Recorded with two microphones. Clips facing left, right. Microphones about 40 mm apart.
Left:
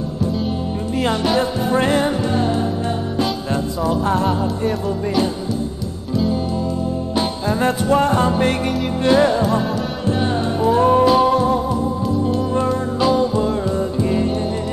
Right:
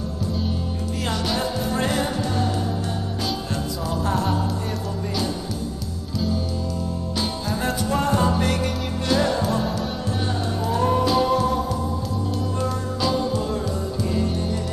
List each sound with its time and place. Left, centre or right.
1.4 s music: left
3.8 s music: left
9.4 s music: centre
10.6 s music: left